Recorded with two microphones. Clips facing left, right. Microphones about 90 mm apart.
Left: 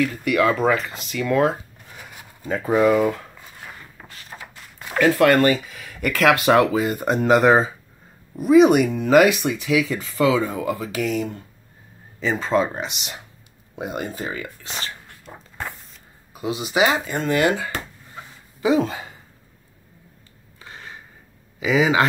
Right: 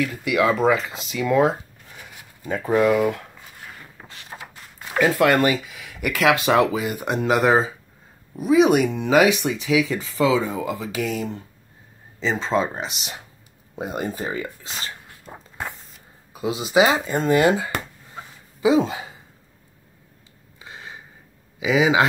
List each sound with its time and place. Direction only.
0.0 s speech: 15° right (ahead or behind)
2.4 s speech: 5° left (ahead or behind)
4.1 s a sound: 20° right (ahead or behind)
5.1 s speech: 10° right (ahead or behind)
12.4 s speech: 30° right (ahead or behind)
12.7 s speech: centre (ahead or behind)
13.8 s speech: 35° right (ahead or behind)
15.3 s walk: 15° right (ahead or behind)
16.3 s speech: 25° right (ahead or behind)
20.5 s a sound: 15° right (ahead or behind)
21.5 s speech: 10° right (ahead or behind)